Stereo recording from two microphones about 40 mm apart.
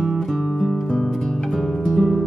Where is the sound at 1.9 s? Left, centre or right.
Centre.